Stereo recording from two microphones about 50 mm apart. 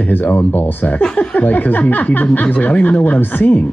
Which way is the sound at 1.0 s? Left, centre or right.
Left.